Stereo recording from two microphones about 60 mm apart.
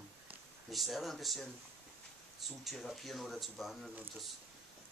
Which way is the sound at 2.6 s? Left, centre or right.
Centre.